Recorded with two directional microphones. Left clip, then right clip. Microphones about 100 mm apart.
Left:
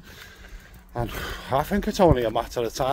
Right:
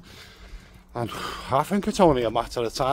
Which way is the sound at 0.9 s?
35° right (ahead or behind).